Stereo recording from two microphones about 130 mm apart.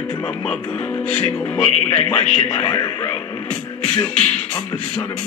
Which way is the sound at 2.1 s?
50° left (ahead or behind).